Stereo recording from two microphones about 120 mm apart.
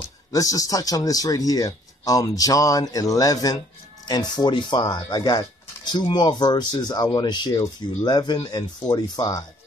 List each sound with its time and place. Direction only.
0.3 s speech: 30° left (ahead or behind)